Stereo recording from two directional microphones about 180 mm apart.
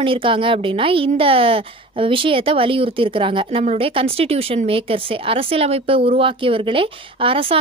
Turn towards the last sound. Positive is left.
turn(degrees=-30)  # may be behind; listen again after turning